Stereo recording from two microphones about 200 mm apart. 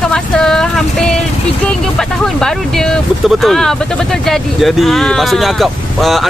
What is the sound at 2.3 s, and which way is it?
Speech, 5° left (ahead or behind).